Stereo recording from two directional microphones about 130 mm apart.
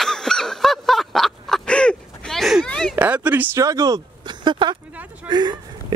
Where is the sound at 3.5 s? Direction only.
25° right (ahead or behind).